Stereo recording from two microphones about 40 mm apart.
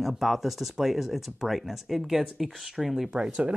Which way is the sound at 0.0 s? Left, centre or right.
Centre.